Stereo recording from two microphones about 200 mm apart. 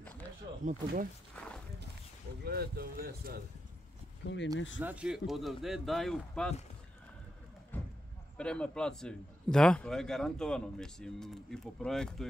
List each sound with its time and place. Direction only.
0.7 s speech: 40° right (ahead or behind)
1.3 s a sound: 5° left (ahead or behind)
2.4 s speech: 50° right (ahead or behind)
4.2 s speech: 60° left (ahead or behind)
4.7 s a man's voice: 5° right (ahead or behind)
7.7 s a sound: 10° left (ahead or behind)
8.4 s a man's voice: 5° left (ahead or behind)